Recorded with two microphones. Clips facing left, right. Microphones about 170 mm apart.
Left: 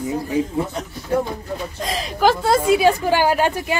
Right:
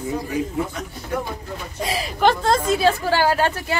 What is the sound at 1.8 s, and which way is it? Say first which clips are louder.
Speech: right 5 dB; 10° right (ahead or behind).